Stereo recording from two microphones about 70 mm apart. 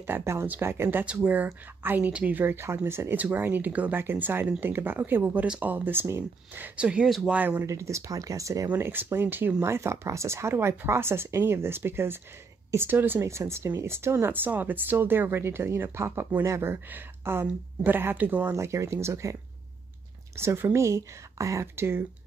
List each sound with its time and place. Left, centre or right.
0.0 s speech: right
0.8 s speech: right
3.2 s speech: right
6.6 s speech: centre
7.6 s speech: right
8.6 s speech: right
13.2 s speech: right
18.5 s speech: right
20.3 s speech: right
21.7 s speech: right